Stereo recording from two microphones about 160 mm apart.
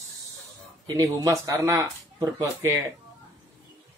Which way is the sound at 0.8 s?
20° right (ahead or behind).